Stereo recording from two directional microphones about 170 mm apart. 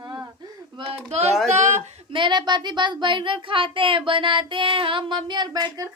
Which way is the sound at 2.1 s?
25° right (ahead or behind).